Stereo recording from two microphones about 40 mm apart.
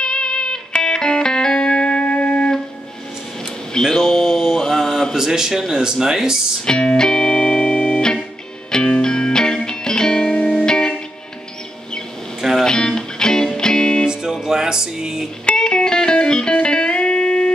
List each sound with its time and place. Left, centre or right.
0.0 s music: left
3.9 s mantra: centre
5.1 s speech: centre
6.6 s music: left
12.4 s music: centre
12.6 s music: centre
14.0 s music: centre
15.4 s music: left